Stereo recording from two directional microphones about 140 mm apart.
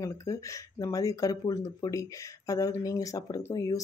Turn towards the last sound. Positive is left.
turn(degrees=25)  # may be behind; listen again after turning